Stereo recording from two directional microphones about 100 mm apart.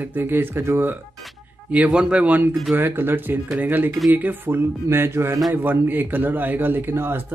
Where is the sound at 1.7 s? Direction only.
15° right (ahead or behind).